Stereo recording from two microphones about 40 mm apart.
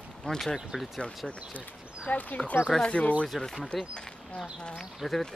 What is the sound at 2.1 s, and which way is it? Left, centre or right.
Speech, left.